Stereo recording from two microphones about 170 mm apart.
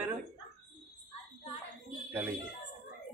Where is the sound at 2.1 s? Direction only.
10° right (ahead or behind).